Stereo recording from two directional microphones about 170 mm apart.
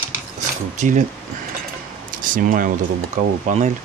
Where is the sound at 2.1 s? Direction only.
55° right (ahead or behind).